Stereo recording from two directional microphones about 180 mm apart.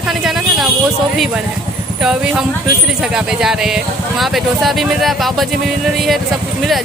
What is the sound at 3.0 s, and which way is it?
Speech, 5° right (ahead or behind).